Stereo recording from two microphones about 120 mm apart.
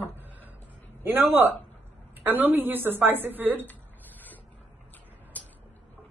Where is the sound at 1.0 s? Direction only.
20° right (ahead or behind).